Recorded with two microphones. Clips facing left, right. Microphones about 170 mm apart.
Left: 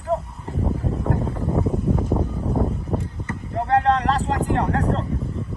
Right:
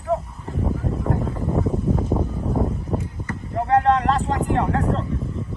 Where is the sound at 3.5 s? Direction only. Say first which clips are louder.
Right 1 dB; 35° left (ahead or behind).